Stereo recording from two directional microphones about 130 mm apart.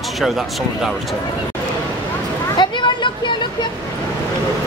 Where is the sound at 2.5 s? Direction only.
35° left (ahead or behind).